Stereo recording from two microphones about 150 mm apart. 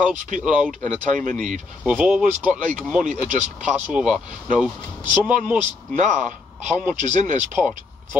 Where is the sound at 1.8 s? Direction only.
10° right (ahead or behind).